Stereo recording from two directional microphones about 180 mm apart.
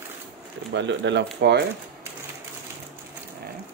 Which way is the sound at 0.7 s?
80° right.